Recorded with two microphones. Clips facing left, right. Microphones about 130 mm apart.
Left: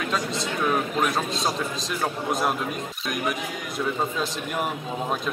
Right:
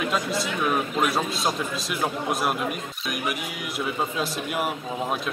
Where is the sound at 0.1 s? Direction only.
5° right (ahead or behind).